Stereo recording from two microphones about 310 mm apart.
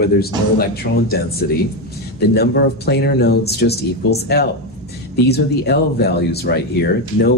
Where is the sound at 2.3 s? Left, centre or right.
Left.